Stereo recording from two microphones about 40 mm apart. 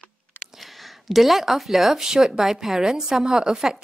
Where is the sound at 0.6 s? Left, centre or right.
Centre.